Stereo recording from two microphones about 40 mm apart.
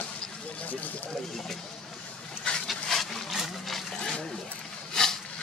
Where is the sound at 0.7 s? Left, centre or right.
Left.